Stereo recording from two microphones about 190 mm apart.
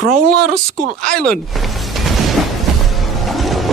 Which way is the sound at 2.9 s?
Centre (ahead or behind).